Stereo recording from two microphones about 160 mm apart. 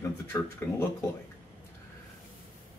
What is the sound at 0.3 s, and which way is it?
Speech, 20° left (ahead or behind).